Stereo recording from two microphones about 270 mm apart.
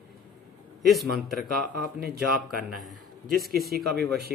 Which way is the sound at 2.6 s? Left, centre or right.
Centre.